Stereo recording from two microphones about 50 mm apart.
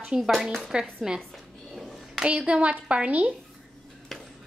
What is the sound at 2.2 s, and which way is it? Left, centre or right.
A woman's voice, right.